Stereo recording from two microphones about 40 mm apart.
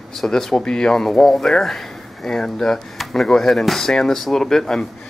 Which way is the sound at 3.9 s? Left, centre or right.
Centre.